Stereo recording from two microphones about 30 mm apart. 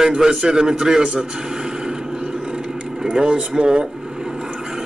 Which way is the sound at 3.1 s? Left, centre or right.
Right.